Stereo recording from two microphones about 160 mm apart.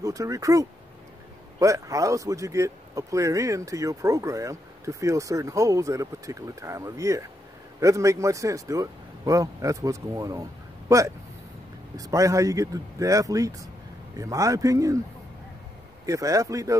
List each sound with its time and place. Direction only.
0.0 s speech: 20° right (ahead or behind)
12.0 s speech: 20° right (ahead or behind)
16.1 s speech: 20° right (ahead or behind)